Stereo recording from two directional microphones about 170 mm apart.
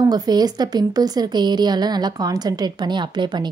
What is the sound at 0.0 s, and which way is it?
A woman's voice, 25° right (ahead or behind).